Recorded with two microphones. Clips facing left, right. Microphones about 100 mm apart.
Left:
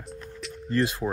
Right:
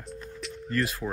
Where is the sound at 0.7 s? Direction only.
25° left (ahead or behind).